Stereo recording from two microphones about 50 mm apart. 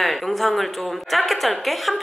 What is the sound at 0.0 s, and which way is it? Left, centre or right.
Speech, centre.